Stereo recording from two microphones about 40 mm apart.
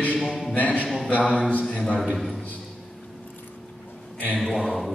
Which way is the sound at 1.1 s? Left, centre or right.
Left.